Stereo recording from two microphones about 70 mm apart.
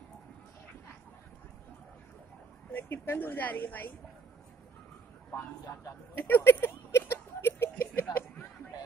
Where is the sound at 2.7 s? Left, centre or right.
Left.